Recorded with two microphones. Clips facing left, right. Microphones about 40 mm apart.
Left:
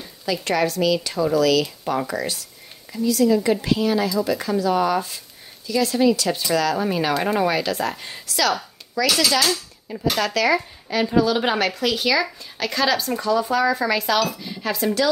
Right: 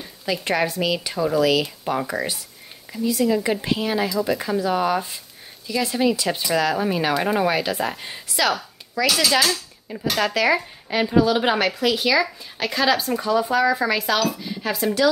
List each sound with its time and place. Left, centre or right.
0.0 s a woman's voice: centre
9.0 s speech: centre
9.9 s a woman's voice: centre